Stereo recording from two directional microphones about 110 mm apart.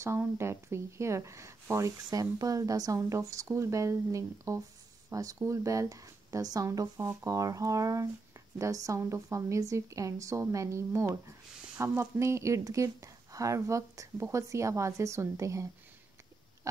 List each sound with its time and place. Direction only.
0.0 s speech: 25° right (ahead or behind)